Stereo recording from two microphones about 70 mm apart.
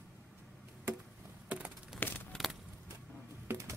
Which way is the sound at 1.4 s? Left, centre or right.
Right.